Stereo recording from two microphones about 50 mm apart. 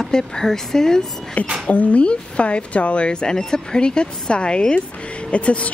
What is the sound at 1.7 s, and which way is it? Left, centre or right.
A woman's voice, left.